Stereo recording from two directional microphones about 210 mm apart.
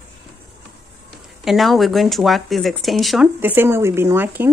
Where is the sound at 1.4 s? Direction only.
Centre (ahead or behind).